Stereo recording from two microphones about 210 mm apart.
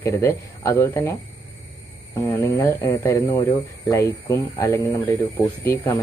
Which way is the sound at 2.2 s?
15° left (ahead or behind).